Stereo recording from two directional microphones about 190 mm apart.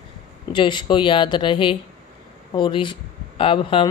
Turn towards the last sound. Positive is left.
turn(degrees=25)  # may be behind; listen again after turning